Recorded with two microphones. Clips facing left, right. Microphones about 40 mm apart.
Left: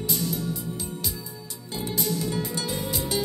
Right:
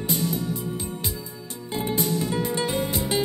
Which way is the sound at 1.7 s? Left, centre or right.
Right.